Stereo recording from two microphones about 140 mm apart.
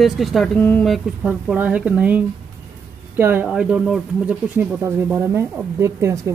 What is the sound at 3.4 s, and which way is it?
Speech, 5° right (ahead or behind).